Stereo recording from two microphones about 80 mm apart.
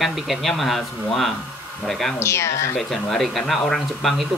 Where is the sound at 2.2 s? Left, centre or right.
Left.